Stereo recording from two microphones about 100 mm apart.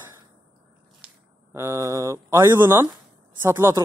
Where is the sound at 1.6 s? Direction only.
30° right (ahead or behind).